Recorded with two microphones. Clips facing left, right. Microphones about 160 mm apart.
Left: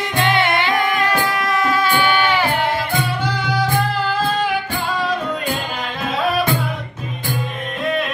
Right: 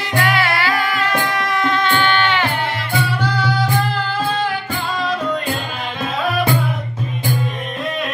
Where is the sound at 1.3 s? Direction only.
Centre (ahead or behind).